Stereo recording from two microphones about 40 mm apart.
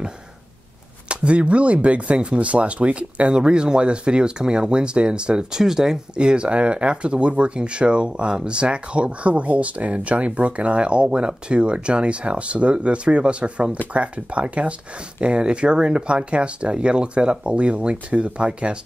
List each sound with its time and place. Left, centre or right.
1.0 s speech: right; by 5.9 s centre
6.1 s speech: right